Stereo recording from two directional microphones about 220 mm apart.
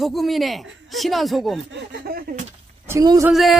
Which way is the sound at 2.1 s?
45° right (ahead or behind).